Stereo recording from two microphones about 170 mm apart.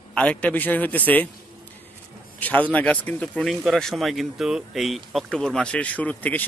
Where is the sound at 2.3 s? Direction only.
10° left (ahead or behind).